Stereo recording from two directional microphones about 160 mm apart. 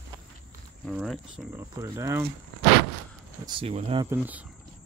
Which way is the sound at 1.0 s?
5° right (ahead or behind).